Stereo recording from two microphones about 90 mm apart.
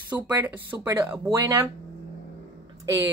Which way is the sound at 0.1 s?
20° right (ahead or behind).